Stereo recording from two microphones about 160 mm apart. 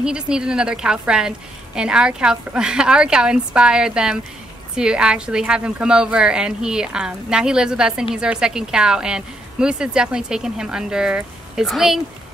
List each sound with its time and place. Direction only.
0.0 s a woman's voice: 5° right (ahead or behind)